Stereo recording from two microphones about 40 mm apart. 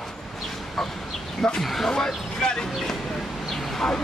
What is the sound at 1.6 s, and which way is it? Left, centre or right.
Speech, centre.